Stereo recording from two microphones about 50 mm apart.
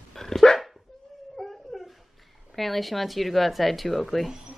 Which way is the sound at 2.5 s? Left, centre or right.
Centre.